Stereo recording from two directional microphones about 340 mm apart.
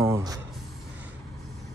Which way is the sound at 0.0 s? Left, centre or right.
Centre.